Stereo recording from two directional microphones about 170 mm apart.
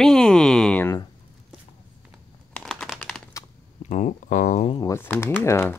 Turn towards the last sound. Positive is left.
turn(degrees=15)  # may be behind; listen again after turning